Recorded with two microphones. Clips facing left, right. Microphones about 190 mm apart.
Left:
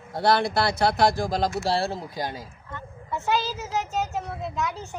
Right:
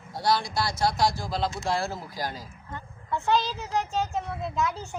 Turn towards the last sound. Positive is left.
turn(degrees=0)  # may be behind; listen again after turning